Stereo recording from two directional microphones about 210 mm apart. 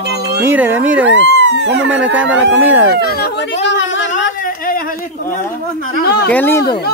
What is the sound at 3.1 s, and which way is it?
Chatter, 50° left (ahead or behind).